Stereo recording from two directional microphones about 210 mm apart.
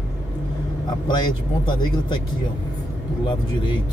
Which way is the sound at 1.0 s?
20° left (ahead or behind).